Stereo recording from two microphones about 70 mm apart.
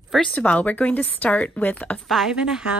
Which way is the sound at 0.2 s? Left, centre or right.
Centre.